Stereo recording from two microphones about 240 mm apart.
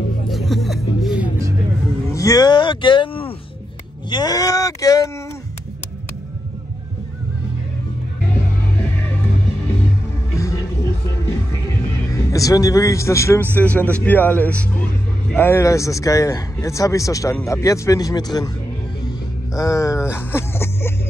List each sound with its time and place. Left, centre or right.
0.3 s music: centre
2.1 s a sound: centre
4.1 s speech: centre
10.3 s music: centre
12.1 s a man's voice: centre
19.5 s a sound: centre